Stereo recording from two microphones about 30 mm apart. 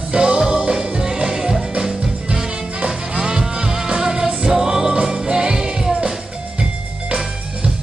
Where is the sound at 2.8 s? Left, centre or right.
Right.